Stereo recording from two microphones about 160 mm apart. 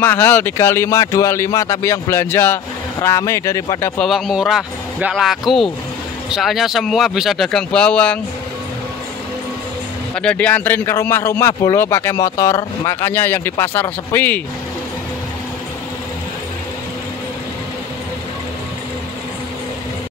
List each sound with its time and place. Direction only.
0.0 s speech: 15° left (ahead or behind)
4.0 s speech: centre (ahead or behind)
10.1 s speech: 5° left (ahead or behind)